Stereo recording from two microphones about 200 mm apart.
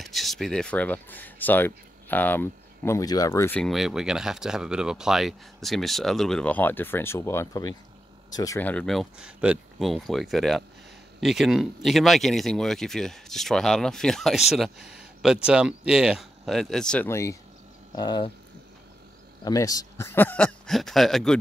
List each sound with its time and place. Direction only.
0.0 s speech: centre (ahead or behind); by 18.3 s 20° left (ahead or behind)
19.4 s speech: 20° left (ahead or behind); by 21.4 s centre (ahead or behind)